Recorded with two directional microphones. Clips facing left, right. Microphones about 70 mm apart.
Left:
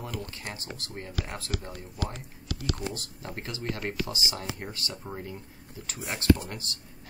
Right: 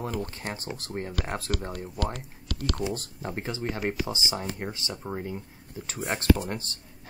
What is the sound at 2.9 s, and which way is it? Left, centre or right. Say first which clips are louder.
Speech: right 6 dB; right.